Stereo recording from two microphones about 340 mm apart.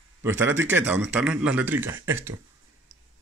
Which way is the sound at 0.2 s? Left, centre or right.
Centre.